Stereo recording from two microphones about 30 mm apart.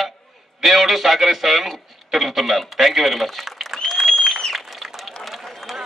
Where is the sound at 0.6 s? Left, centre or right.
Centre.